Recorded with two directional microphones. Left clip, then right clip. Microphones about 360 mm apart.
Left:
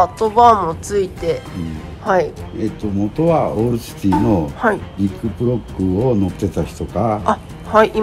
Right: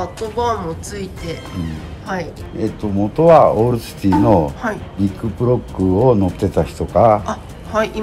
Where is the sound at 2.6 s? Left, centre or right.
Centre.